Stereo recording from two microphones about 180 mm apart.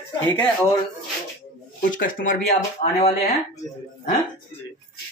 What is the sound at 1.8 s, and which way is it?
Speech, 50° left (ahead or behind).